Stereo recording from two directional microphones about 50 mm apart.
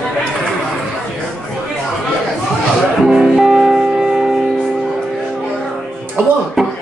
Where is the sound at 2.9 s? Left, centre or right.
Centre.